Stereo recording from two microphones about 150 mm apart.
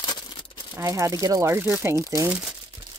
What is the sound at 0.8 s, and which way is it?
Speech, 20° right (ahead or behind).